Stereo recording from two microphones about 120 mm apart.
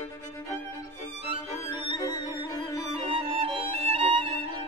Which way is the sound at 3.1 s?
55° right (ahead or behind).